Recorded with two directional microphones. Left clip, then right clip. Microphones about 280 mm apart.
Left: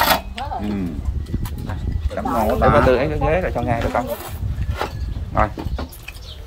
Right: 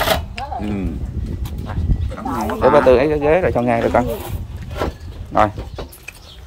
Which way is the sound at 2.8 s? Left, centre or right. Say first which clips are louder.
Right 5 dB; centre.